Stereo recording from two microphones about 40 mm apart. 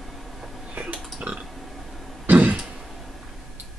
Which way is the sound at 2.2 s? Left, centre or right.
Right.